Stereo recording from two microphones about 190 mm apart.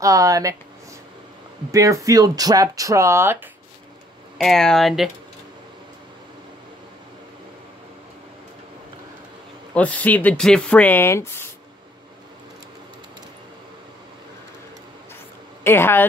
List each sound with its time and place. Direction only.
0.0 s speech: 15° right (ahead or behind)
1.7 s speech: 15° right (ahead or behind)
4.4 s speech: centre (ahead or behind)
9.8 s speech: 5° left (ahead or behind)
15.6 s speech: 10° left (ahead or behind)